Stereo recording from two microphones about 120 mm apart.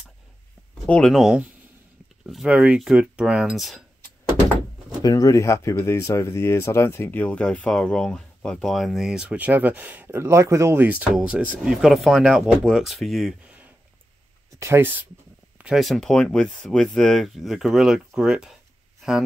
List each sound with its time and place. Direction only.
0.8 s speech: 10° left (ahead or behind)
1.1 s speech: 5° right (ahead or behind)
5.0 s speech: 30° left (ahead or behind); by 13.3 s centre (ahead or behind)
14.6 s speech: 20° right (ahead or behind); by 19.2 s 5° right (ahead or behind)